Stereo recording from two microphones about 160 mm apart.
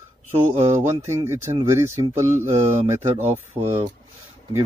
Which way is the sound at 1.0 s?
15° right (ahead or behind).